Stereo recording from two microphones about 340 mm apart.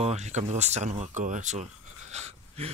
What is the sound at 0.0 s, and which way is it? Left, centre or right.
Speech, centre.